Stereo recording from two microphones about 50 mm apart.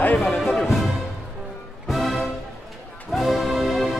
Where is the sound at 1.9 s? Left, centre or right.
Centre.